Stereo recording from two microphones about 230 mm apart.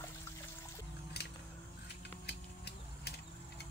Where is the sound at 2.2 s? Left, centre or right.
Left.